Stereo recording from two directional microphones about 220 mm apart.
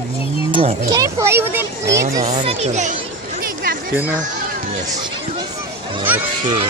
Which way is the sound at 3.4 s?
40° right (ahead or behind).